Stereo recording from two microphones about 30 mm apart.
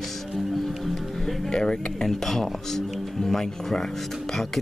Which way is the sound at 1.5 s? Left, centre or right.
Left.